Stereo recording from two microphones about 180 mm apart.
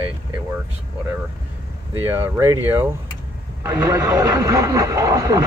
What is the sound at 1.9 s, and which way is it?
Speech, 15° right (ahead or behind).